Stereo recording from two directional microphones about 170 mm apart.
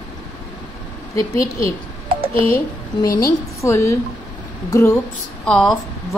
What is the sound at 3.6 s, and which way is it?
A woman's voice, 15° left (ahead or behind).